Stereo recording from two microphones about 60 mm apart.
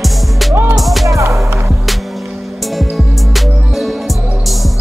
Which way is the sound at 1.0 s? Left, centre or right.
Right.